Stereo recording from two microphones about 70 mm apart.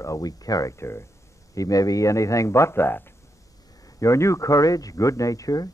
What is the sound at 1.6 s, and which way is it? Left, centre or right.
Speech, left.